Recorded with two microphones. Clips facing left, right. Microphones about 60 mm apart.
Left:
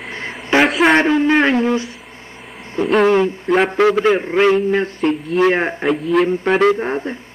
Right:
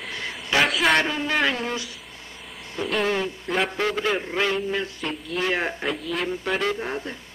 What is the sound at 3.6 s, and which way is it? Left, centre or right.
Speech, left.